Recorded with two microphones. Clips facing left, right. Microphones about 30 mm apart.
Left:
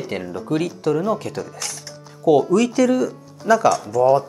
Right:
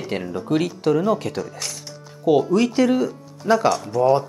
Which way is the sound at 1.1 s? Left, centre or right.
Right.